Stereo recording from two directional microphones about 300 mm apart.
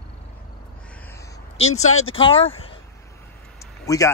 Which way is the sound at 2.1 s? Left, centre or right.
Centre.